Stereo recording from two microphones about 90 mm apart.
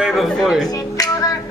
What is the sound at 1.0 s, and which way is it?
Music, 45° left (ahead or behind).